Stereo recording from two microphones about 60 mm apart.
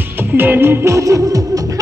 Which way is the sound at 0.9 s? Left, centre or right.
Right.